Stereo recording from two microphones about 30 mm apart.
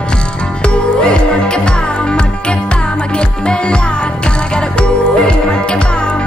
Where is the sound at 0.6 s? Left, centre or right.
Left.